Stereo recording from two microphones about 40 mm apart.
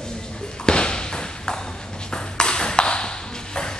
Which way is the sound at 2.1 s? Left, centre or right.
Left.